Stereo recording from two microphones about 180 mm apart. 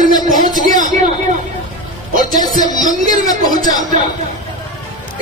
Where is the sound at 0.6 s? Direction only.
50° right (ahead or behind).